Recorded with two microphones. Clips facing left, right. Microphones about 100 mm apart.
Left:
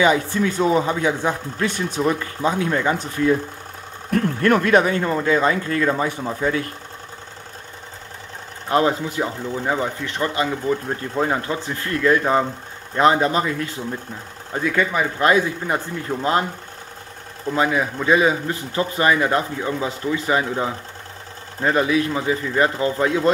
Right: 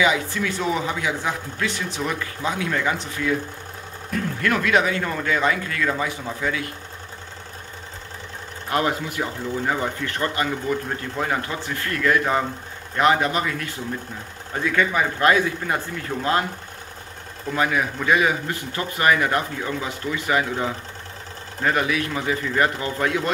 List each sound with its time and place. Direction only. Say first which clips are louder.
0.0 s speech: left 4 dB; 35° left (ahead or behind)
8.6 s speech: left 4 dB; 25° left (ahead or behind)
14.9 s speech: left 1 dB; 25° left (ahead or behind)
17.5 s speech: left 3 dB; 25° left (ahead or behind)